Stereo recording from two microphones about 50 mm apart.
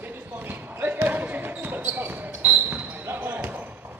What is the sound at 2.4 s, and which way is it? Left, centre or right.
Basketball bounce, right.